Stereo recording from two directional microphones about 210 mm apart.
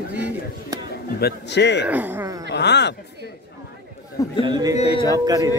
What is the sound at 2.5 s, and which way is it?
Speech, 55° left (ahead or behind).